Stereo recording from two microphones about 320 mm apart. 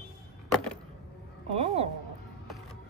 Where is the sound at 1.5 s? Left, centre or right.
Centre.